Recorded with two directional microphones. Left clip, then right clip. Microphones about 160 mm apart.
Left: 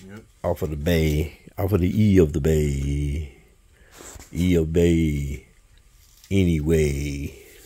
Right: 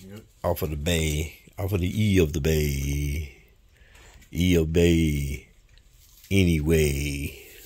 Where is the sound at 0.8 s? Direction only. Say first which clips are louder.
Left 5 dB; 45° left (ahead or behind).